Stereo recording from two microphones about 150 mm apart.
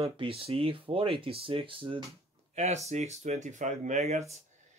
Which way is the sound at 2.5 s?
50° right (ahead or behind).